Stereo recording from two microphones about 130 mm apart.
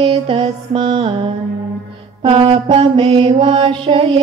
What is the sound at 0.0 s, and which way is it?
Music, 45° right (ahead or behind).